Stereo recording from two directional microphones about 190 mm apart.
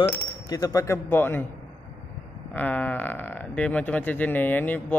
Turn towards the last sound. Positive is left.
turn(degrees=10)  # may be behind; listen again after turning